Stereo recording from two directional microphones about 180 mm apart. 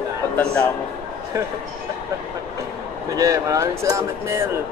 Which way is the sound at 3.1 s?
20° right (ahead or behind).